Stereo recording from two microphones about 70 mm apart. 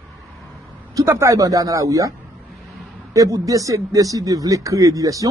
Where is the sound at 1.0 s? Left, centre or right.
Right.